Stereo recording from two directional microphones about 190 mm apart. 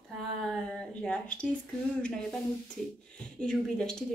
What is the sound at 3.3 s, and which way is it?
Speech, 5° left (ahead or behind).